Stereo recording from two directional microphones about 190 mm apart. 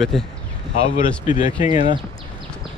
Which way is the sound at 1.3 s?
40° left (ahead or behind).